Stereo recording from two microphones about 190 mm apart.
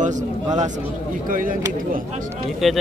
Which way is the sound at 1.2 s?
45° right (ahead or behind).